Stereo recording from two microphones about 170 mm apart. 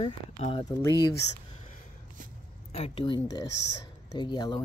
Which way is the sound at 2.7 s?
35° left (ahead or behind).